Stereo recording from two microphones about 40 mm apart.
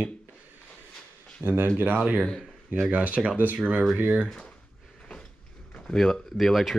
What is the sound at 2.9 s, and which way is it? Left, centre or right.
Speech, right.